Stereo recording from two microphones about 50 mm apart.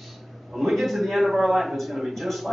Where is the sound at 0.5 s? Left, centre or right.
Centre.